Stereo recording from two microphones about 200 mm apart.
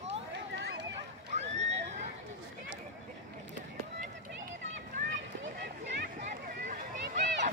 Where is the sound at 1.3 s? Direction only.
35° right (ahead or behind).